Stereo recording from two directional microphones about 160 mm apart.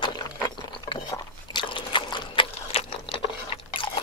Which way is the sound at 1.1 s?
30° left (ahead or behind).